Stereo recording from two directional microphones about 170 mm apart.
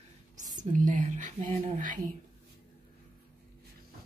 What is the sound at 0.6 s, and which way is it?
Speech, 50° right (ahead or behind).